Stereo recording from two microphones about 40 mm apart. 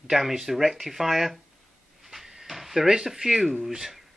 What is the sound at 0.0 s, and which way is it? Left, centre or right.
Speech, centre.